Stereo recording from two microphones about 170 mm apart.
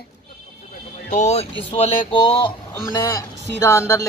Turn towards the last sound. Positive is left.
turn(degrees=15)  # may be behind; listen again after turning